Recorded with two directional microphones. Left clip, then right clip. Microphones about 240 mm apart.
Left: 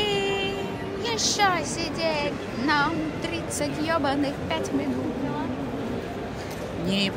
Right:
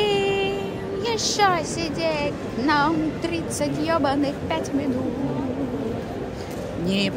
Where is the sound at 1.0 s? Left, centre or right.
Centre.